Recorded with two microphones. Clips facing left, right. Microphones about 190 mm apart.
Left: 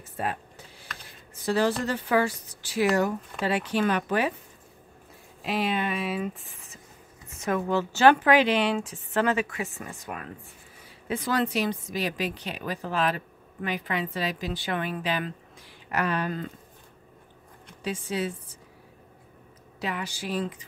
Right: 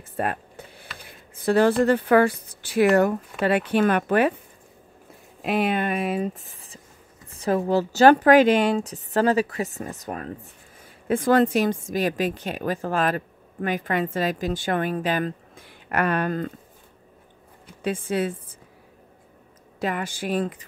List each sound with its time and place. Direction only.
0.2 s a sound: 60° right (ahead or behind)
1.3 s speech: 55° right (ahead or behind)
5.4 s a woman's voice: 55° right (ahead or behind)
6.2 s speech: 35° right (ahead or behind)
11.1 s a woman's voice: 50° right (ahead or behind)
17.8 s a woman's voice: 55° right (ahead or behind)
19.8 s a woman's voice: 50° right (ahead or behind)